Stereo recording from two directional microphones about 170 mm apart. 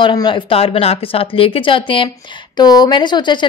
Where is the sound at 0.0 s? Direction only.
25° left (ahead or behind).